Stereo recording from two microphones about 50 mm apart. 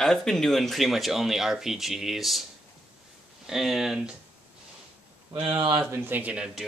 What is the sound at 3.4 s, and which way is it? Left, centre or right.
Speech, centre.